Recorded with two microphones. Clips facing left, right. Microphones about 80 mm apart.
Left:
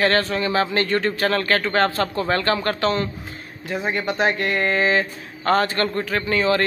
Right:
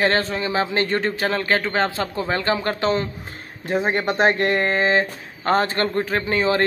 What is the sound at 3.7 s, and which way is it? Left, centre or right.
Speech, right.